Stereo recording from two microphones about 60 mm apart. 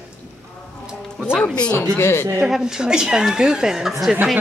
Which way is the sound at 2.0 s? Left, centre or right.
Left.